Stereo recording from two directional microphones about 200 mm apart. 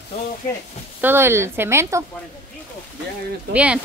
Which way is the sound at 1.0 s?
10° right (ahead or behind).